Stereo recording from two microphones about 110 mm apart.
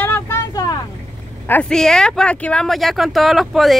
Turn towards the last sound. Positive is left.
turn(degrees=0)  # may be behind; listen again after turning